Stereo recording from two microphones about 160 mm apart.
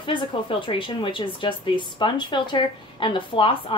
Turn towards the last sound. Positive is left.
turn(degrees=30)  # may be behind; listen again after turning